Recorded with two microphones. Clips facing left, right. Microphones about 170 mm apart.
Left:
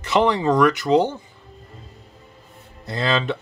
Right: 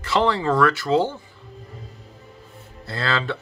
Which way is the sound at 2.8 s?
20° left (ahead or behind).